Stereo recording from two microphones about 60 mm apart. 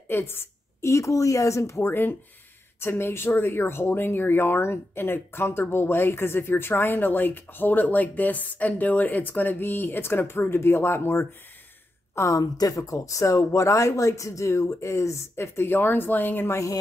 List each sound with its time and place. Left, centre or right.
0.1 s a sound: left
0.8 s speech: left
12.2 s speech: left